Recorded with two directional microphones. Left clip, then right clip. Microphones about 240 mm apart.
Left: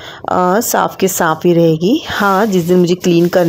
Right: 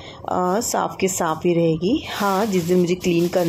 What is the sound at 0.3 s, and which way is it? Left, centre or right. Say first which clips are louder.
Speech: left 8 dB; left.